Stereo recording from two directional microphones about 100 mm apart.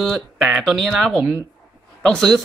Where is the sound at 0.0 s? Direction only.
Centre (ahead or behind).